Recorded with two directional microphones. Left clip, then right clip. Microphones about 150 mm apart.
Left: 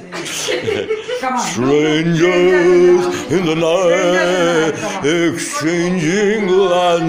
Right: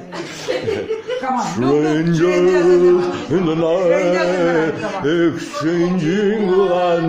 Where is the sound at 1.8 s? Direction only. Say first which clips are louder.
Left 4 dB; 5° right (ahead or behind).